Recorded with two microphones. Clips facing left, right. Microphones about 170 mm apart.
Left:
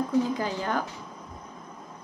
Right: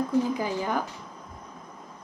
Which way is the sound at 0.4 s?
15° right (ahead or behind).